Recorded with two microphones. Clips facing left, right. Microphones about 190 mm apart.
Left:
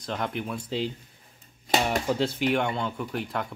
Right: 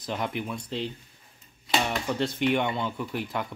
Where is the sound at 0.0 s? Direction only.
5° right (ahead or behind).